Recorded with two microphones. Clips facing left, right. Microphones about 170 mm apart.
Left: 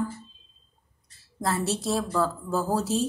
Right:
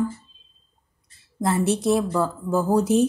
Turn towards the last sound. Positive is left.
turn(degrees=-15)  # may be behind; listen again after turning